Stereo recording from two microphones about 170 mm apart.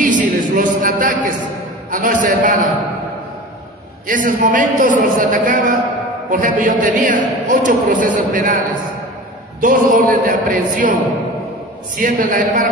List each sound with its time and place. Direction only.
0.0 s a sound: 50° right (ahead or behind)
1.9 s a man's voice: 55° right (ahead or behind)
4.1 s a man's voice: 50° right (ahead or behind)
9.6 s a man's voice: 55° right (ahead or behind)
12.0 s a man's voice: 50° right (ahead or behind)